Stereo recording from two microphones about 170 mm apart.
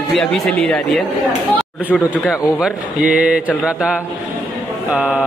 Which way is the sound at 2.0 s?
5° right (ahead or behind).